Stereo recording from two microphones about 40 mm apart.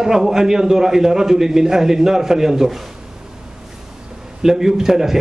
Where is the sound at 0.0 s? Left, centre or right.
Centre.